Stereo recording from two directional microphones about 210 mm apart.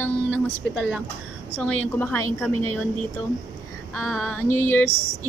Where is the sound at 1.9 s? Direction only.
10° left (ahead or behind).